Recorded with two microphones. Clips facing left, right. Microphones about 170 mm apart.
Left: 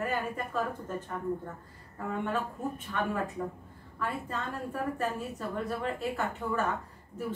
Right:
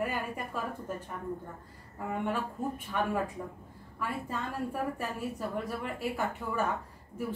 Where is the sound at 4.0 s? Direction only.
10° right (ahead or behind).